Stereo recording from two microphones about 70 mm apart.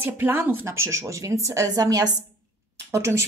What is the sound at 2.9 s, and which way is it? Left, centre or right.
Speech, right.